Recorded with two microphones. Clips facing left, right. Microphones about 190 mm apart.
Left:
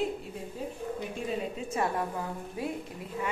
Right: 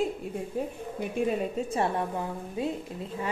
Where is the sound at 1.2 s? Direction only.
55° right (ahead or behind).